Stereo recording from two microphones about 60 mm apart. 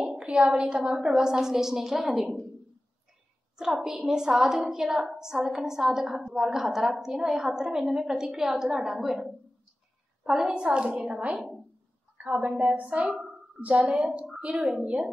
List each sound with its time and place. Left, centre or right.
0.2 s a sound: centre
0.5 s a woman's voice: centre
3.5 s a woman's voice: centre
11.3 s a woman's voice: centre
12.2 s a woman's voice: right